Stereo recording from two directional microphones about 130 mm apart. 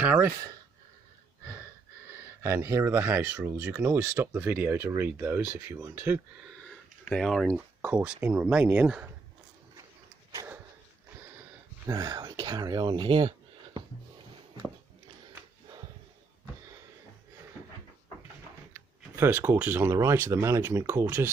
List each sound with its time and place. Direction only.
0.0 s speech: 15° right (ahead or behind)
2.4 s speech: 20° right (ahead or behind)
6.7 s a sound: 5° left (ahead or behind)
7.5 s speech: 10° right (ahead or behind)
10.3 s a sound: 20° right (ahead or behind)
11.8 s speech: 35° right (ahead or behind)
18.7 s speech: 20° right (ahead or behind)